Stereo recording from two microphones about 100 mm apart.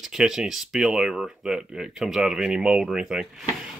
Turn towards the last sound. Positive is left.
turn(degrees=-5)  # may be behind; listen again after turning